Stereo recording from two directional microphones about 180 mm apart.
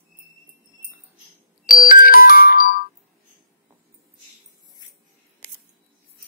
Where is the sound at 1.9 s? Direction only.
50° left (ahead or behind).